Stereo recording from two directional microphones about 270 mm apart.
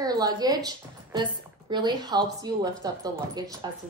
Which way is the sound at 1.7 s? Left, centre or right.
Centre.